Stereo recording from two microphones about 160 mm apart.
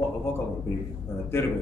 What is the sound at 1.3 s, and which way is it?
Speech, 15° left (ahead or behind).